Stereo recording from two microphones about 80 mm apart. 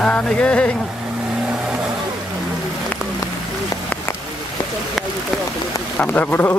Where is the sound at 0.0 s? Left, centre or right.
Centre.